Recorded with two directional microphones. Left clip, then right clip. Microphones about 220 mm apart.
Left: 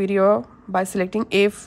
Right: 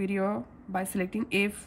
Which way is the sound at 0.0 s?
15° left (ahead or behind).